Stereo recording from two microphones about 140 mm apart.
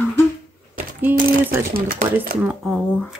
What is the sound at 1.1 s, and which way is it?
Speech, 10° right (ahead or behind).